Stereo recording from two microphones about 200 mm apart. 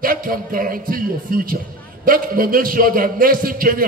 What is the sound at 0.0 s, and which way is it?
A man's voice, 45° right (ahead or behind).